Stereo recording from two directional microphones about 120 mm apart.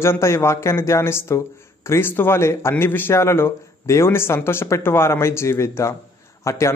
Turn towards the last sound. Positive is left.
turn(degrees=25)  # may be behind; listen again after turning